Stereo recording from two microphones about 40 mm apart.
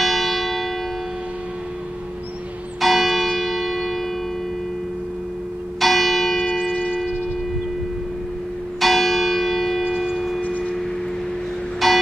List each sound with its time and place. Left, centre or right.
0.0 s church bell: centre
2.8 s church bell: centre
5.8 s church bell: centre
8.7 s church bell: centre
10.1 s a sound: centre
11.8 s music: centre